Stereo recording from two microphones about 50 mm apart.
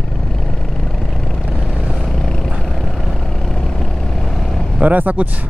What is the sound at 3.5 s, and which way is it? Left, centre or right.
Vehicle, centre.